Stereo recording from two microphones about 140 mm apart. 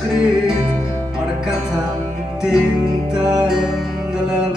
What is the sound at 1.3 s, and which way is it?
Music, 5° right (ahead or behind).